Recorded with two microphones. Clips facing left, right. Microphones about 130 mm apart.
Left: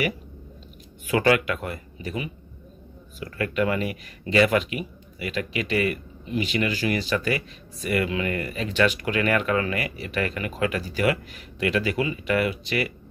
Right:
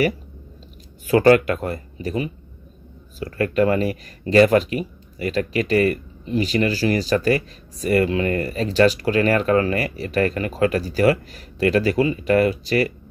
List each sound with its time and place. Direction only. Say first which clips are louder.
1.0 s speech: right 7 dB; 40° right (ahead or behind)